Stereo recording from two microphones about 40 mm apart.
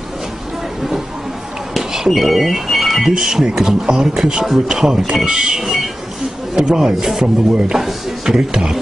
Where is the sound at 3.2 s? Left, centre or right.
Centre.